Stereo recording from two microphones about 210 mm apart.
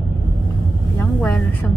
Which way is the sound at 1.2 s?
5° left (ahead or behind).